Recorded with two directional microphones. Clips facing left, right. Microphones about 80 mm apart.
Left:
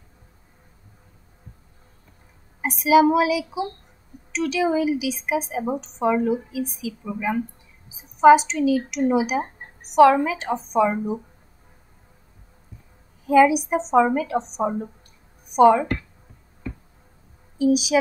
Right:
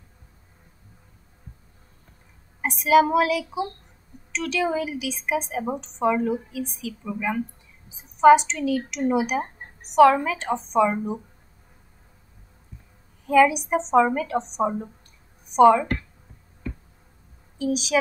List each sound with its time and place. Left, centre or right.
2.6 s a woman's voice: centre
6.9 s a woman's voice: centre
10.1 s speech: centre
10.4 s a woman's voice: centre
13.2 s a woman's voice: centre
17.6 s speech: centre